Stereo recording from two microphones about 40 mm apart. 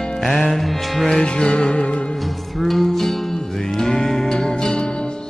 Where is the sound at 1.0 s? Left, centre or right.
Left.